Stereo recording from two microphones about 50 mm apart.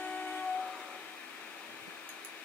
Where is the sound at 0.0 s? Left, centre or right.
Left.